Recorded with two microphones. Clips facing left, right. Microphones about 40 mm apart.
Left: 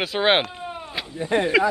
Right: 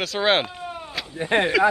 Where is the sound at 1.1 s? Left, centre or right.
Right.